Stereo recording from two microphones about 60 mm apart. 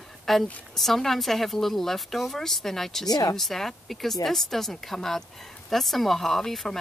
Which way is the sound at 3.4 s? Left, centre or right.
Centre.